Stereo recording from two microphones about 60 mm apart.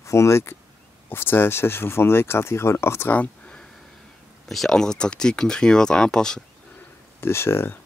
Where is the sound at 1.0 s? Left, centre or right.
Left.